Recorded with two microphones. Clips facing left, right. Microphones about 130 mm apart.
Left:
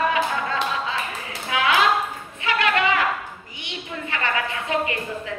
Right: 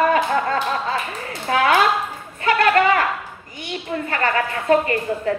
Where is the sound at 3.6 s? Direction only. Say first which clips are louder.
Right 7 dB; 45° right (ahead or behind).